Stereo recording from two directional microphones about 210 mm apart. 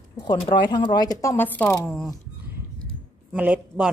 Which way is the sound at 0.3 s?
25° left (ahead or behind).